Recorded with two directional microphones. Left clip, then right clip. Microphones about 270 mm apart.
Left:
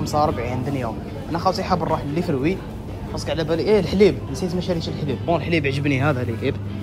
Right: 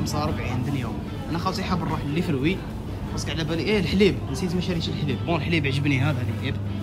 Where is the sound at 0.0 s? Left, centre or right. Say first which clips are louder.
Left 8 dB; right.